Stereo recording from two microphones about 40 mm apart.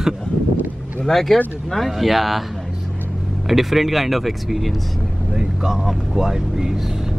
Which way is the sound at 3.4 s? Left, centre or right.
Centre.